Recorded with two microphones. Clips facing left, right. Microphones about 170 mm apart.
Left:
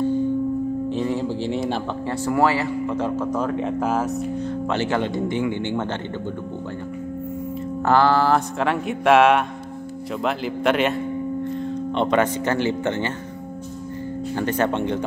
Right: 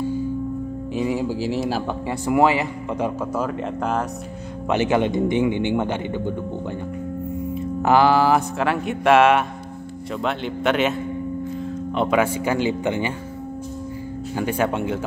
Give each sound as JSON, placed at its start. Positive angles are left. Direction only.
{"t": 0.9, "sound": "speech", "side_deg": -10}
{"t": 2.2, "sound": "speech", "side_deg": -15}
{"t": 4.6, "sound": "speech", "side_deg": -15}
{"t": 7.8, "sound": "speech", "side_deg": -15}
{"t": 14.3, "sound": "speech", "side_deg": -10}